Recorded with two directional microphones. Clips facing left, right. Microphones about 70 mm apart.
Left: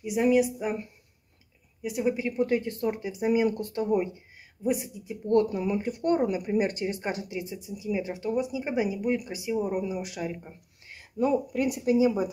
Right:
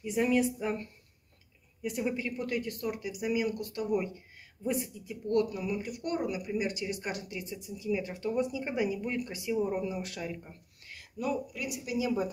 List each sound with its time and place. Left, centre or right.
0.0 s speech: centre
2.1 s speech: left
4.6 s speech: centre; by 12.1 s left